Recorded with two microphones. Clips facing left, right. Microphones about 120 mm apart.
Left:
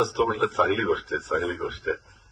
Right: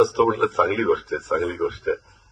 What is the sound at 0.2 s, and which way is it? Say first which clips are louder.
A man's voice: right 4 dB; 50° right (ahead or behind).